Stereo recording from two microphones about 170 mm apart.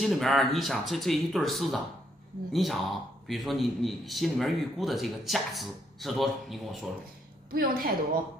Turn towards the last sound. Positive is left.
turn(degrees=-60)  # may be behind; listen again after turning